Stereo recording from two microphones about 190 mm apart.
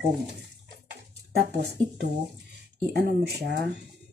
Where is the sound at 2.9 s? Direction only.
60° right (ahead or behind).